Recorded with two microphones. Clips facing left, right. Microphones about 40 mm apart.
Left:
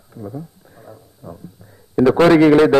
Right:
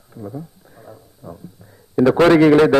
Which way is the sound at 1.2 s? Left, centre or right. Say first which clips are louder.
Even; centre.